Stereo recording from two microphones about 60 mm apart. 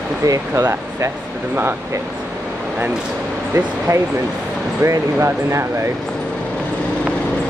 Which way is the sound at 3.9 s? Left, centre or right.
Right.